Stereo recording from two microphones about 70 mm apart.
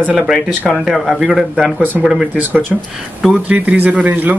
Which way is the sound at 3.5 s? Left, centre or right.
Right.